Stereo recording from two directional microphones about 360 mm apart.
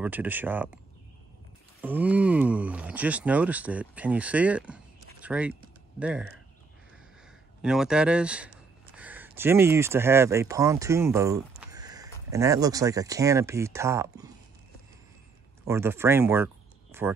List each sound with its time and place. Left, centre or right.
0.0 s speech: centre
1.8 s speech: centre
7.6 s speech: centre
15.6 s speech: centre